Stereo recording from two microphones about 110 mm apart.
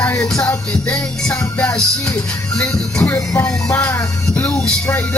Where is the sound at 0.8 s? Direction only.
10° left (ahead or behind).